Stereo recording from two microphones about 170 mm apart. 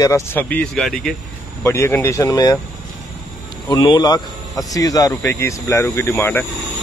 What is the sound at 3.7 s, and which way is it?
Speech, 25° left (ahead or behind).